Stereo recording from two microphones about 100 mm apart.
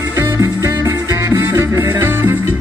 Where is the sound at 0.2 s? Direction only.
35° right (ahead or behind).